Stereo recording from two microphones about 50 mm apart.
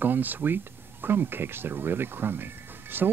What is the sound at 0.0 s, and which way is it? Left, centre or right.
Speech, right.